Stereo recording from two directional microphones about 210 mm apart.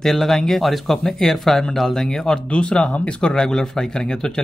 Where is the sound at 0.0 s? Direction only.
Centre (ahead or behind).